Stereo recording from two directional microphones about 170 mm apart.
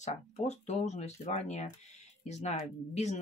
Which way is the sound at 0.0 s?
40° left (ahead or behind).